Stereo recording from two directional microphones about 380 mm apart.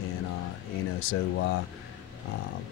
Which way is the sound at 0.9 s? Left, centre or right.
Left.